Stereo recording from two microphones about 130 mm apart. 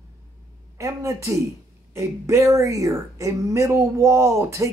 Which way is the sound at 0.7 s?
25° right (ahead or behind).